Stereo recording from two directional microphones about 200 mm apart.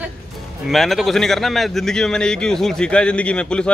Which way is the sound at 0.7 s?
Centre (ahead or behind).